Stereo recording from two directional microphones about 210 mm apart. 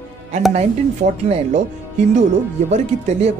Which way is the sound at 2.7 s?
30° right (ahead or behind).